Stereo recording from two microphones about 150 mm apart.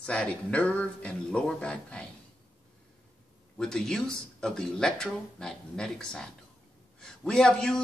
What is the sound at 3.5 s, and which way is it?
A man's voice, 5° left (ahead or behind).